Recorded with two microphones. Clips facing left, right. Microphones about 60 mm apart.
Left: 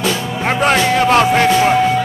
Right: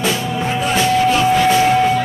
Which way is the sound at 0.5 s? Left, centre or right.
Left.